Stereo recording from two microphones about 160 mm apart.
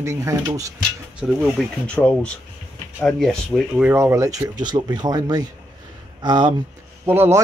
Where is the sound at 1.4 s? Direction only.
5° left (ahead or behind).